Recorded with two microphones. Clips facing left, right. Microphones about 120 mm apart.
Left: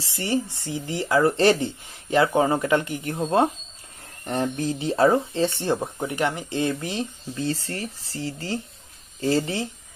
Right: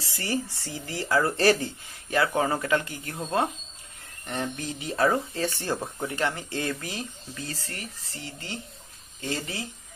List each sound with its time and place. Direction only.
0.0 s speech: 25° left (ahead or behind)